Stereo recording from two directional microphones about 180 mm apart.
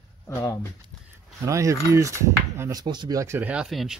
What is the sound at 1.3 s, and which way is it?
Speech, 15° right (ahead or behind).